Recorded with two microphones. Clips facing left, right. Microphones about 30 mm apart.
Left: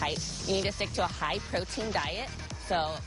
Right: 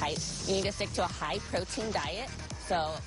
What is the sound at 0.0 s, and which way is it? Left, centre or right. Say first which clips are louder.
Speech: left 1 dB; centre.